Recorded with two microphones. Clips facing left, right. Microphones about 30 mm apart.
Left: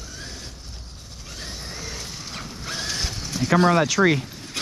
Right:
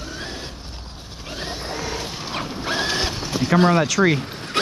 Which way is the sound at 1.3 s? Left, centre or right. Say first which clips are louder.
Right 7 dB; right.